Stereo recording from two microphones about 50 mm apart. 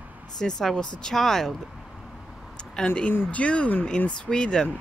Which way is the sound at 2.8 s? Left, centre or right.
Centre.